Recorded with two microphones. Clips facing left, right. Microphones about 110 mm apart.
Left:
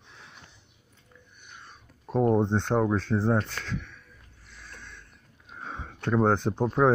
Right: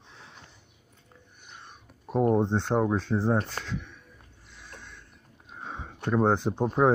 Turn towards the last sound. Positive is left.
turn(degrees=-10)  # may be behind; listen again after turning